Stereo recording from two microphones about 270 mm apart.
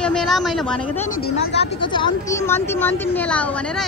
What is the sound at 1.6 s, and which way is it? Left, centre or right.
Speech, centre.